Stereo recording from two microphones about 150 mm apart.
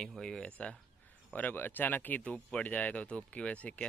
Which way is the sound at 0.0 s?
5° left (ahead or behind).